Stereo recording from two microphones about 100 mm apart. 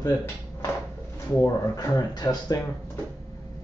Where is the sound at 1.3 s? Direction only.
35° left (ahead or behind).